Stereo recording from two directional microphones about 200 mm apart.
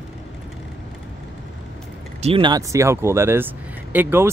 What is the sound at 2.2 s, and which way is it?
Speech, 25° right (ahead or behind).